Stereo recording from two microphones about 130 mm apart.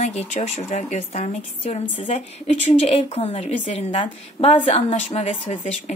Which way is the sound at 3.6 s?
45° left (ahead or behind).